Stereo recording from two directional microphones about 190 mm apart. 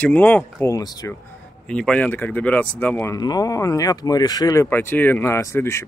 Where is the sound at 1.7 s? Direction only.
5° left (ahead or behind).